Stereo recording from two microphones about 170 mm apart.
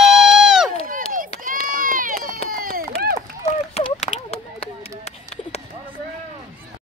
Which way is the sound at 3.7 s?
35° left (ahead or behind).